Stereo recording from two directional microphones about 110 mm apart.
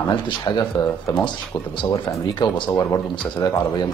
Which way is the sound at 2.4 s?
40° left (ahead or behind).